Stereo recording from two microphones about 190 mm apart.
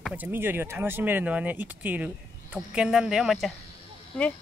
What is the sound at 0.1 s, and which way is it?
Speech, 10° right (ahead or behind).